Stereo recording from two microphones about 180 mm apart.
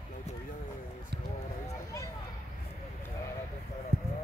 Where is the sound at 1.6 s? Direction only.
15° left (ahead or behind).